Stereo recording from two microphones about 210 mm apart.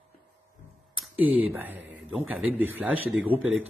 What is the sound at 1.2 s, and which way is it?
Speech, 70° right (ahead or behind).